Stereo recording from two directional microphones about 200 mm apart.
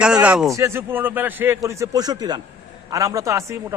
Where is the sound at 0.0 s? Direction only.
5° right (ahead or behind).